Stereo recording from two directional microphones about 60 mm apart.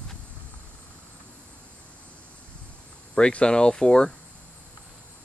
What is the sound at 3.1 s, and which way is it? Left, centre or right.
Speech, centre.